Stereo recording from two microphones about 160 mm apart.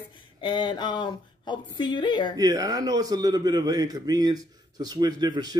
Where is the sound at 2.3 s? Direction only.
20° right (ahead or behind).